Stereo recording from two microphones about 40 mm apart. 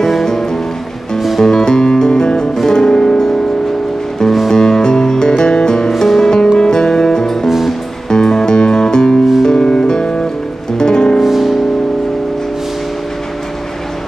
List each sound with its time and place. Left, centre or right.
0.2 s music: centre
4.5 s music: centre
7.4 s music: centre
8.1 s music: centre
11.1 s music: centre